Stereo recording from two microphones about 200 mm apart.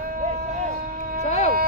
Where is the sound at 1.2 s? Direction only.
35° left (ahead or behind).